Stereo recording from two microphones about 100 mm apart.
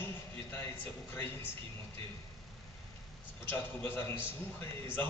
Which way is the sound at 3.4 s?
20° left (ahead or behind).